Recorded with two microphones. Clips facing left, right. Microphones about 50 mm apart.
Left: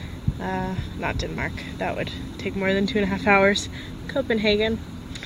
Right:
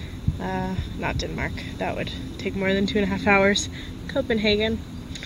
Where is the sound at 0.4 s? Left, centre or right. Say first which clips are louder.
Left 1 dB; centre.